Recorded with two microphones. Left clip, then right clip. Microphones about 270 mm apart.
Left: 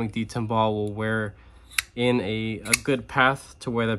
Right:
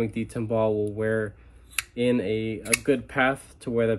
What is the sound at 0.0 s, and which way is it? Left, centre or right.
Speech, centre.